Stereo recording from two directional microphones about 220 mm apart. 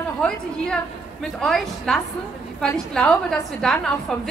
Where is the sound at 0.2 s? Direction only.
5° left (ahead or behind).